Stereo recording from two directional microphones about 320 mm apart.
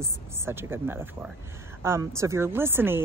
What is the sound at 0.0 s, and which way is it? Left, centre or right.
A woman's voice, centre.